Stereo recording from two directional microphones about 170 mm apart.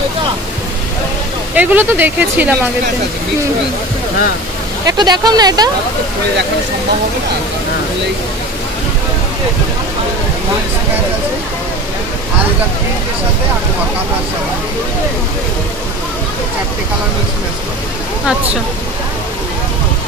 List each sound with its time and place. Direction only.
1.5 s speech: 10° right (ahead or behind)
4.8 s speech: 25° right (ahead or behind)